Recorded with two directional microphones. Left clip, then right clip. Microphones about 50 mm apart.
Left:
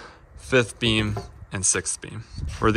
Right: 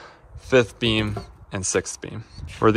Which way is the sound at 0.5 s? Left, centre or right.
Left.